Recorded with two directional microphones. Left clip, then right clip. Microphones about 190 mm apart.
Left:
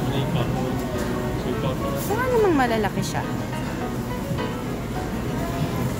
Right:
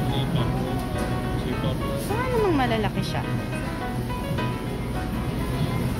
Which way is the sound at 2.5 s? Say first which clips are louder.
Left 3 dB; 10° left (ahead or behind).